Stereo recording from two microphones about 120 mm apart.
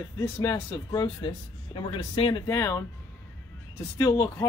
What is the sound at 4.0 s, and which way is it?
Speech, 30° left (ahead or behind).